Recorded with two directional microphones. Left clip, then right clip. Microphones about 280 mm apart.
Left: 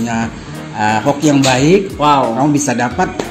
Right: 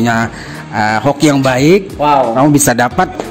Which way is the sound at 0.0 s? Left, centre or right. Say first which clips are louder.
Right 6 dB; right.